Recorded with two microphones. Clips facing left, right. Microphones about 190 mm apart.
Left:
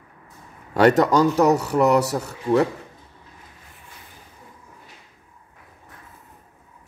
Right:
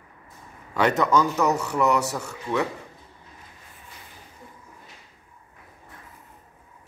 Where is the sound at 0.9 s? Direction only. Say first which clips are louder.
Left 5 dB; 40° left (ahead or behind).